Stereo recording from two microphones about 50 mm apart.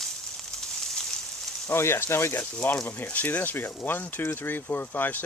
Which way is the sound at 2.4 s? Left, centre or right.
Left.